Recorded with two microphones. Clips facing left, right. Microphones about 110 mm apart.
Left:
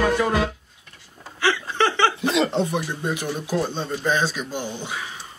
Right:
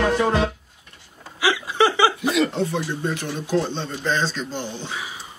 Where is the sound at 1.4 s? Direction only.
10° right (ahead or behind).